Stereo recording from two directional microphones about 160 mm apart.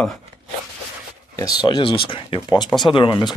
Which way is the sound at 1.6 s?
30° left (ahead or behind).